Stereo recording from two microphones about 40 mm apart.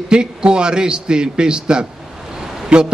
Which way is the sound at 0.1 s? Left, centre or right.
Right.